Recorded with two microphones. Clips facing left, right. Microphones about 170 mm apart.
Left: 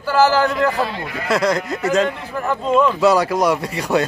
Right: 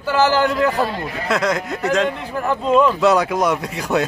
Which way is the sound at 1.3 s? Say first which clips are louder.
Left 2 dB; centre (ahead or behind).